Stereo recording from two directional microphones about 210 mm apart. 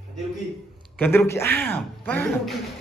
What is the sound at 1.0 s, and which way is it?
A man's voice, 10° left (ahead or behind).